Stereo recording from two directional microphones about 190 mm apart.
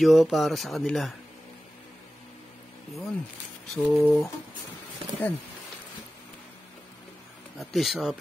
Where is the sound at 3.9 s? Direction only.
10° left (ahead or behind).